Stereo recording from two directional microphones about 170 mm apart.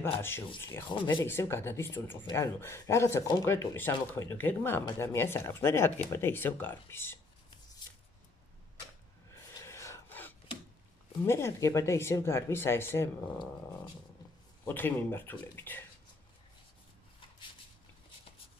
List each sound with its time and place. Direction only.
0.0 s speech: 15° left (ahead or behind)
9.3 s a sound: 20° left (ahead or behind)
11.2 s speech: 15° left (ahead or behind)
14.6 s speech: 10° left (ahead or behind)